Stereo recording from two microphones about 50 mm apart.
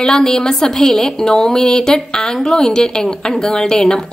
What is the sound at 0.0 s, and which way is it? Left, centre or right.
A woman's voice, centre.